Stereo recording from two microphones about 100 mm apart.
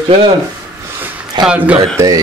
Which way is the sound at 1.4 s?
10° right (ahead or behind).